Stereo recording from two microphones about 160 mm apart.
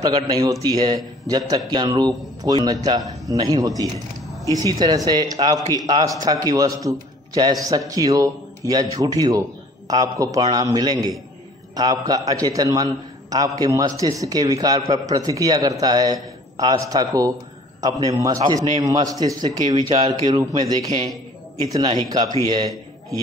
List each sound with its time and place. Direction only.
0.0 s a man's voice: 25° right (ahead or behind)